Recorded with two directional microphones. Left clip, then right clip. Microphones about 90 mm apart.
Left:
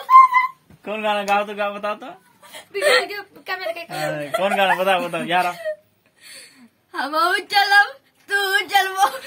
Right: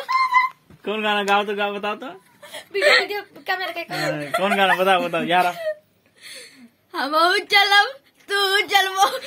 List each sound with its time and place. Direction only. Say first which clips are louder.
0.0 s a sound: left 7 dB; 5° left (ahead or behind)
0.9 s a man's voice: even; 15° left (ahead or behind)
1.3 s speech: even; 5° left (ahead or behind)
2.4 s whimper: right 2 dB; centre (ahead or behind)
2.8 s speech: right 1 dB; 50° left (ahead or behind)
3.1 s speech: right 3 dB; centre (ahead or behind)
4.2 s a man's voice: left 1 dB; 20° left (ahead or behind)